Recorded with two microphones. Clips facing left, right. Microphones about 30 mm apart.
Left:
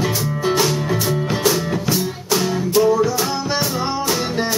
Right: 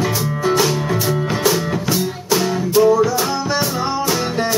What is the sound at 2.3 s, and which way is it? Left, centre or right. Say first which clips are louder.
Music: right 1 dB; centre.